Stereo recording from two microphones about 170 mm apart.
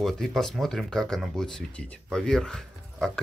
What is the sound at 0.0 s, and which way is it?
Speech, centre (ahead or behind).